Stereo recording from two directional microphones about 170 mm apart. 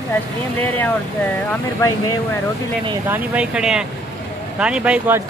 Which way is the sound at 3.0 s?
10° right (ahead or behind).